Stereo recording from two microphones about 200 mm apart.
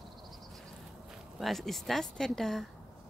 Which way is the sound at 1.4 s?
Centre (ahead or behind).